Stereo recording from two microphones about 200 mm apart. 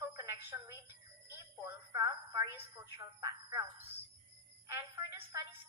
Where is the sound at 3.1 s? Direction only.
20° right (ahead or behind).